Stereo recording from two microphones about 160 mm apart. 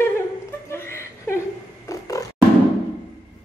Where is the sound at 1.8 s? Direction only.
20° left (ahead or behind).